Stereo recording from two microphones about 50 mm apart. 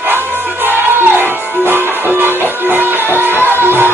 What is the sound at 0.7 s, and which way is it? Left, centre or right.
Music, right.